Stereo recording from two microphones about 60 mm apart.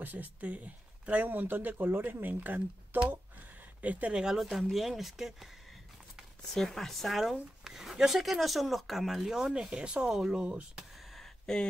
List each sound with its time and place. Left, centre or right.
0.0 s speech: right
4.4 s speech: centre
6.4 s speech: centre
10.4 s speech: centre
10.8 s a sound: centre